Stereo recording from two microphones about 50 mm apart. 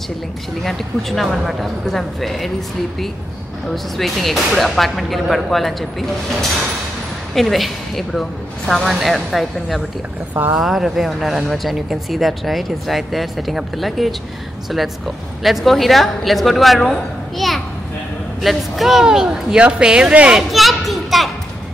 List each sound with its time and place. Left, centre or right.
0.7 s speech: centre
3.6 s speech: centre
7.3 s speech: centre
20.5 s children playing: centre